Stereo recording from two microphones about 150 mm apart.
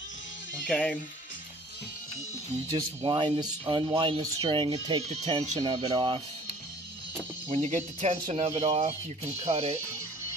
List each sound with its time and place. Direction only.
0.7 s speech: 5° left (ahead or behind)
2.7 s speech: 30° right (ahead or behind)
5.2 s speech: 50° right (ahead or behind)
5.6 s speech: 30° right (ahead or behind)
7.5 s speech: 50° right (ahead or behind)